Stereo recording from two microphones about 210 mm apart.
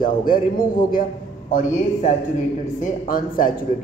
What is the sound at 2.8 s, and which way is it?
Speech, 40° left (ahead or behind).